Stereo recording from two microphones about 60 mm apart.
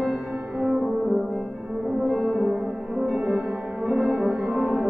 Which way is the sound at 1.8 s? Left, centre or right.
Centre.